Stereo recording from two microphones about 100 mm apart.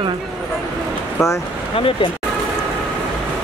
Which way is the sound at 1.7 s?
65° left (ahead or behind).